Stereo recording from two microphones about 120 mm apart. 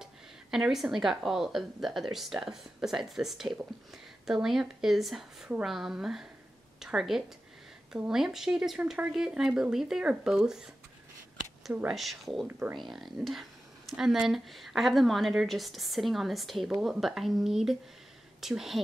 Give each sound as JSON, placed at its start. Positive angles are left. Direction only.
{"t": 0.0, "sound": "a woman's voice", "side_deg": -5}
{"t": 11.9, "sound": "speech", "side_deg": 0}
{"t": 12.4, "sound": "speech", "side_deg": -15}
{"t": 12.7, "sound": "speech", "side_deg": 0}